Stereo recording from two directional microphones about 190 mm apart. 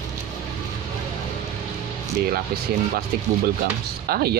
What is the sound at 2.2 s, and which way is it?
Speech, 55° right (ahead or behind).